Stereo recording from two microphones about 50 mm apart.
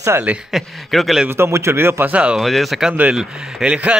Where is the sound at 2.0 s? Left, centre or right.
Right.